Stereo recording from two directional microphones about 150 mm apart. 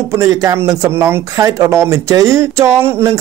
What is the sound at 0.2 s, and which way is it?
A man's voice, 20° right (ahead or behind).